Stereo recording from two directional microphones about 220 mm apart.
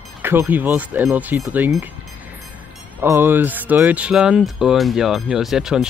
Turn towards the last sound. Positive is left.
turn(degrees=0)  # may be behind; listen again after turning